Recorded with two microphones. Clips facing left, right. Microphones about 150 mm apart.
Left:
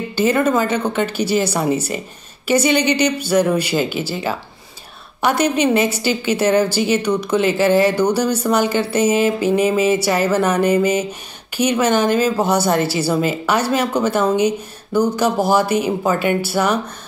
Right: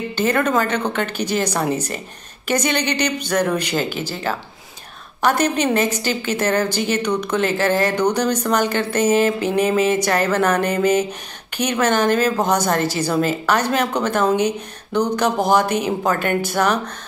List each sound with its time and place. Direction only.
0.1 s a woman's voice: 10° left (ahead or behind)